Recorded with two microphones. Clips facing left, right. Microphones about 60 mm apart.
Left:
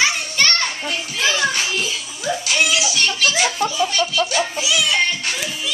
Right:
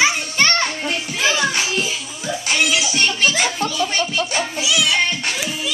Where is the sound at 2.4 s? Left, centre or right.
Right.